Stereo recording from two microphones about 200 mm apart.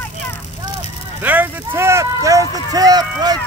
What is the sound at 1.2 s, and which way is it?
Speech, 10° right (ahead or behind).